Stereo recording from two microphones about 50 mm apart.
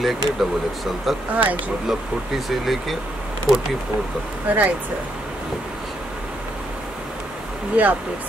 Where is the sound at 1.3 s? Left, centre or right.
Right.